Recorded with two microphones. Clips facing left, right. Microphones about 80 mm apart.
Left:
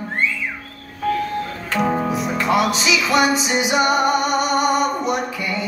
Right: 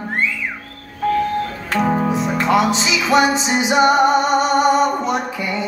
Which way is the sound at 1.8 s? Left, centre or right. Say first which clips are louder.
Right 2 dB; centre.